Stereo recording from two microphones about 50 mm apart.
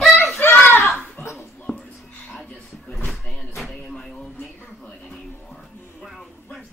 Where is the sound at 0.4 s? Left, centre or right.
Left.